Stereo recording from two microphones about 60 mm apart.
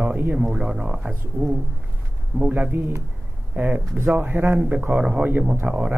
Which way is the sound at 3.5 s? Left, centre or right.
Right.